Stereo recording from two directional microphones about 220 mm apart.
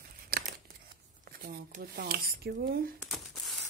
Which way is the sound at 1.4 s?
40° right (ahead or behind).